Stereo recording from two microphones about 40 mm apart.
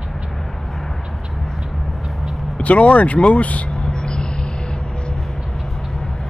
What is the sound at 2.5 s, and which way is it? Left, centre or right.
Speech, left.